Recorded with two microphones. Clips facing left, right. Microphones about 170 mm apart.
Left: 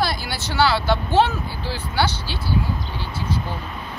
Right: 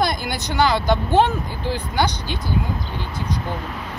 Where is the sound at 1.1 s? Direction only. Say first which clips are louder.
Even; 50° right (ahead or behind).